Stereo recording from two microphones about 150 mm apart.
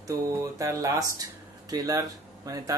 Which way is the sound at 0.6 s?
25° right (ahead or behind).